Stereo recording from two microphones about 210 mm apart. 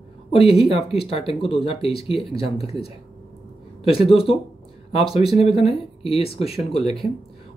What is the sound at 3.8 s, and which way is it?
Speech, 25° left (ahead or behind).